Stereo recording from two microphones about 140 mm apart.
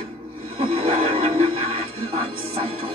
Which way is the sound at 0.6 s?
45° right (ahead or behind).